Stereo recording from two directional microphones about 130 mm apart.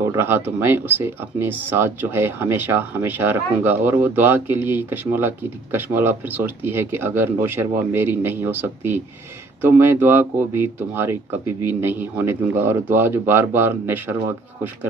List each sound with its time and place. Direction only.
0.0 s speech: 15° right (ahead or behind)